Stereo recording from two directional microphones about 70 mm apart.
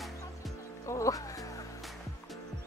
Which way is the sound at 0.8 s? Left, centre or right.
Left.